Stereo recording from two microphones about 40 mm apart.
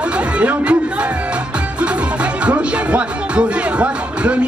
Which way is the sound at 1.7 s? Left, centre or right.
Right.